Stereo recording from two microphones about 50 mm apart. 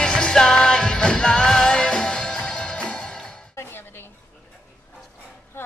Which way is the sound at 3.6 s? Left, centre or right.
Left.